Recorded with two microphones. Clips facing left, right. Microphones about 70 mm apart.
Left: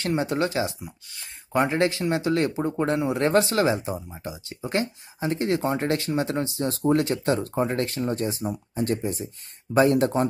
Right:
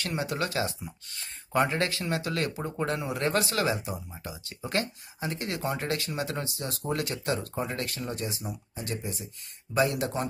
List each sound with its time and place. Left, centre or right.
0.0 s speech: left
0.7 s speech: centre
1.5 s speech: left